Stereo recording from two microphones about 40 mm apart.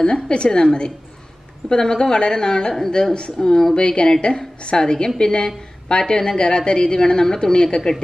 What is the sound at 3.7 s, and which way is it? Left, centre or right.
A woman's voice, left.